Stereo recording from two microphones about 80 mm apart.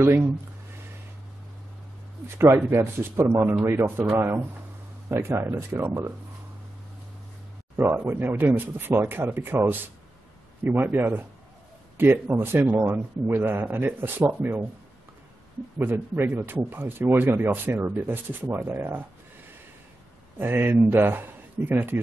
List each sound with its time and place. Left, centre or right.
2.2 s speech: right
5.1 s speech: right
7.7 s speech: right
15.8 s speech: right
20.3 s speech: right